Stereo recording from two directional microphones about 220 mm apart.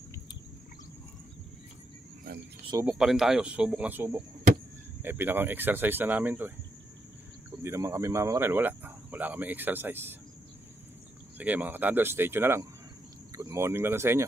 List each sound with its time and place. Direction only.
2.3 s cricket: 45° right (ahead or behind)
2.6 s a sound: 20° right (ahead or behind)
2.9 s speech: centre (ahead or behind)
7.6 s speech: 15° right (ahead or behind)
11.3 s speech: 5° right (ahead or behind)